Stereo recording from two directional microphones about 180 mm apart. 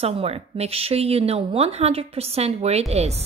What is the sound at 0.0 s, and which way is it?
Speech, 35° right (ahead or behind).